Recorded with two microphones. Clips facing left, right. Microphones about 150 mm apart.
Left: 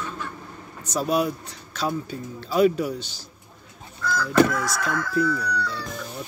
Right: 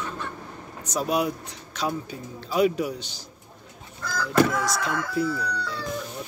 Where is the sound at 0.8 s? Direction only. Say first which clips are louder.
Left 2 dB; 15° right (ahead or behind).